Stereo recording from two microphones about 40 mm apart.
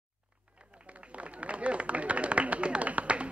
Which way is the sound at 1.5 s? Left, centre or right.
Right.